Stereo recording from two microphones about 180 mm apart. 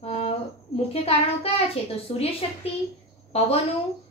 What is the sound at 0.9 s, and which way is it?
A woman's voice, 35° left (ahead or behind).